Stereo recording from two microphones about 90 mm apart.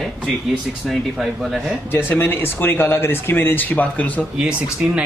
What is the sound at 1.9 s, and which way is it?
Speech, 25° left (ahead or behind).